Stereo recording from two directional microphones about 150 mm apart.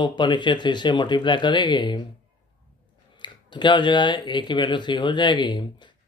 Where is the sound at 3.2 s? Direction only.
30° left (ahead or behind).